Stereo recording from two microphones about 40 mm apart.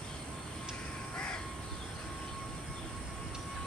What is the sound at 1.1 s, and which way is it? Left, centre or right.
Crow, left.